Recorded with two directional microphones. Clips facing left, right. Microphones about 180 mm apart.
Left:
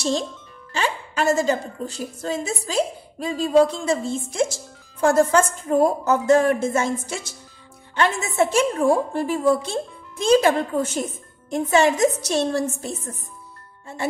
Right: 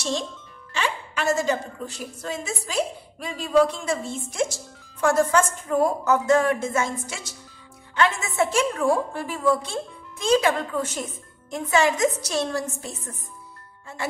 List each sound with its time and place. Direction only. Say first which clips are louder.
0.7 s a woman's voice: left 4 dB; 35° left (ahead or behind)